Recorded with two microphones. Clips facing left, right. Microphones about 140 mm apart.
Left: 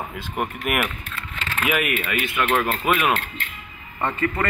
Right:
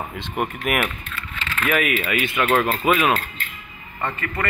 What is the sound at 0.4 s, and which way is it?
Speech, centre (ahead or behind).